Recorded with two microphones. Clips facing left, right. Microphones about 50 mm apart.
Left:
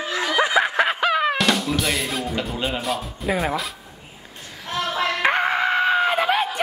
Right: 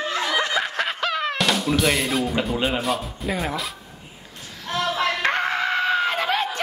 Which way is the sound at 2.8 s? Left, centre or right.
Centre.